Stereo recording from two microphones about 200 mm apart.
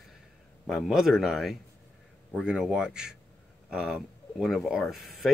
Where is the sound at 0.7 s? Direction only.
Centre (ahead or behind).